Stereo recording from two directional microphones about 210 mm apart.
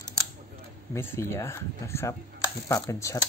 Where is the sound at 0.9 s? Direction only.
10° left (ahead or behind).